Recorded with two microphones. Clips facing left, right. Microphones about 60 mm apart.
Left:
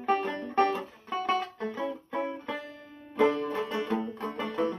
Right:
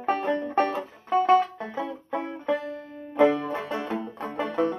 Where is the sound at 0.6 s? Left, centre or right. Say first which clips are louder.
Left 1 dB; centre.